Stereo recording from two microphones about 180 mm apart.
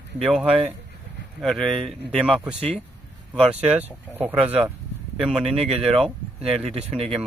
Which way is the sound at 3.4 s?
35° right (ahead or behind).